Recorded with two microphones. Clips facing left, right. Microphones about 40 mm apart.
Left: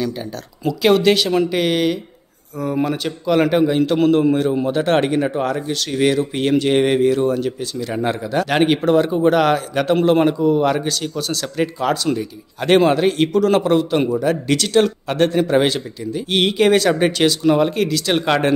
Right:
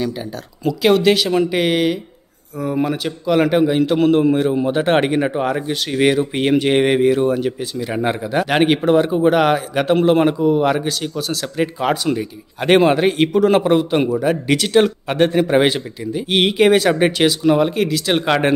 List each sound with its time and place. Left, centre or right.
0.7 s a man's voice: centre
11.8 s speech: centre